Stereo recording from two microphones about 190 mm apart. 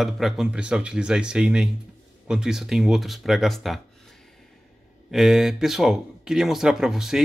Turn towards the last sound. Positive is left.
turn(degrees=0)  # may be behind; listen again after turning